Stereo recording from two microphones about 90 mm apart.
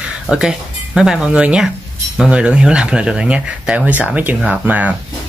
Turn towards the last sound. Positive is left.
turn(degrees=-15)  # may be behind; listen again after turning